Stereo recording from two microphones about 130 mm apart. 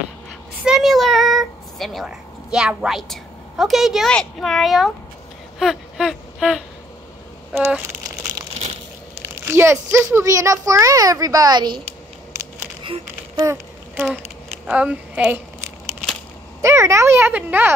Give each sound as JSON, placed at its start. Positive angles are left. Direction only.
{"t": 0.7, "sound": "a woman's voice", "side_deg": 0}
{"t": 9.2, "sound": "a child's voice", "side_deg": -20}
{"t": 12.8, "sound": "a sound", "side_deg": -40}
{"t": 14.7, "sound": "speech", "side_deg": -10}
{"t": 16.6, "sound": "a child's voice", "side_deg": -20}